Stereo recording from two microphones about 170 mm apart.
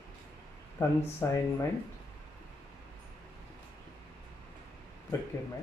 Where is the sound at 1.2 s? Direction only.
20° left (ahead or behind).